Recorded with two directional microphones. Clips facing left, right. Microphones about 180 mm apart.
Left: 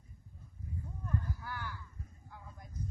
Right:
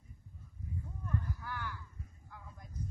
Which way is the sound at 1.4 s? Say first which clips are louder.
Right 1 dB; 10° left (ahead or behind).